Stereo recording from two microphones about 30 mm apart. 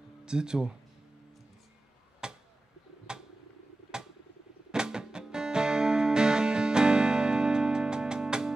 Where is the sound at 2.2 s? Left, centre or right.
Right.